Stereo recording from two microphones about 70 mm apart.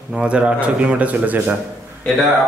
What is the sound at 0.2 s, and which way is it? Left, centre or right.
A man's voice, centre.